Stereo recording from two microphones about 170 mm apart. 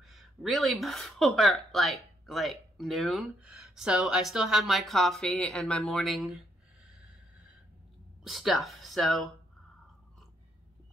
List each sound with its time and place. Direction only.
0.0 s speech: centre (ahead or behind)
8.2 s speech: centre (ahead or behind)